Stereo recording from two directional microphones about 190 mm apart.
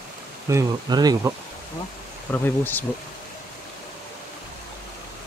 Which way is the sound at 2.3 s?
10° left (ahead or behind).